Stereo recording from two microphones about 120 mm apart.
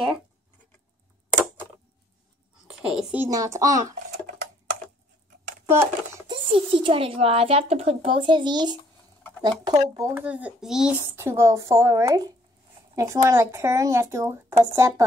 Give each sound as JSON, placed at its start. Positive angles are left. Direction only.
{"t": 2.8, "sound": "a woman's voice", "side_deg": -5}
{"t": 3.3, "sound": "speech", "side_deg": -30}
{"t": 5.7, "sound": "speech", "side_deg": -20}
{"t": 6.2, "sound": "speech", "side_deg": -45}
{"t": 10.1, "sound": "a child's voice", "side_deg": -10}
{"t": 11.0, "sound": "speech", "side_deg": -20}